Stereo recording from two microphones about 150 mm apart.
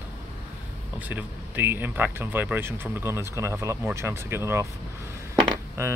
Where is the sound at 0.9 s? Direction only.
10° right (ahead or behind).